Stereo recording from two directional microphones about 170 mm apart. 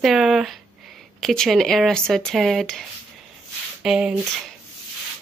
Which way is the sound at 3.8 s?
5° right (ahead or behind).